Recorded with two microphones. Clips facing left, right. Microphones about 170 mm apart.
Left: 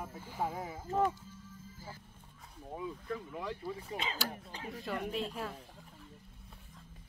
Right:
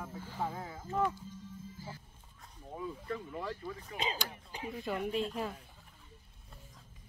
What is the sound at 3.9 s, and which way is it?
Speech, 30° left (ahead or behind).